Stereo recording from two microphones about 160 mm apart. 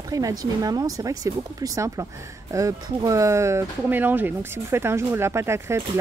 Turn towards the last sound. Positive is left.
turn(degrees=-15)  # may be behind; listen again after turning